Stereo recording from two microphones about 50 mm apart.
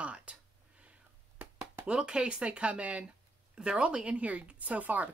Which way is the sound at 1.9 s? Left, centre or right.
Centre.